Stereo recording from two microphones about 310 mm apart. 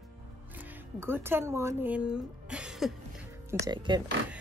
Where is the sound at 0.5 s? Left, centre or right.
Centre.